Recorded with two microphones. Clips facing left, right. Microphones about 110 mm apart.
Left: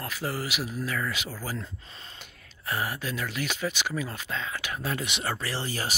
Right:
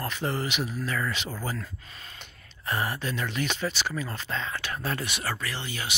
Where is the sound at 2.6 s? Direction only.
5° left (ahead or behind).